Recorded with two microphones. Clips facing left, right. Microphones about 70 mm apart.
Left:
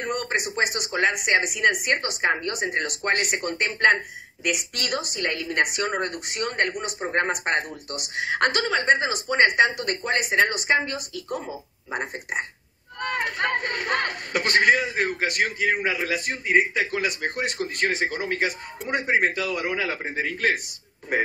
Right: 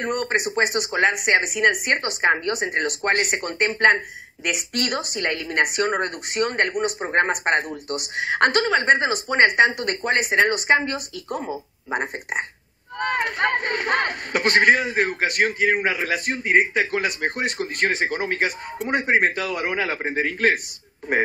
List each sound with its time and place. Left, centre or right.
0.0 s speech: right
4.5 s speech: right
16.7 s speech: right